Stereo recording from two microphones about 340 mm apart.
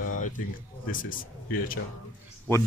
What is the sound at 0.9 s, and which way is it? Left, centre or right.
Speech, left.